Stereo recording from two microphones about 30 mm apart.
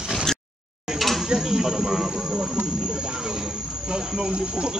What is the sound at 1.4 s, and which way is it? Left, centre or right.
Speech, centre.